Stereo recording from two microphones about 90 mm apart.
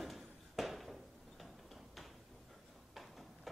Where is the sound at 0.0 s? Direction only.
Centre (ahead or behind).